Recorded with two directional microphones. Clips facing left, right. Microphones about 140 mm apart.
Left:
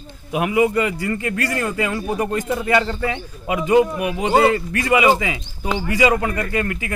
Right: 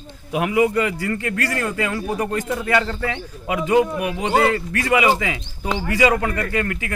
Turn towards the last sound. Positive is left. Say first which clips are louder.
# even
turn(degrees=20)  # may be behind; listen again after turning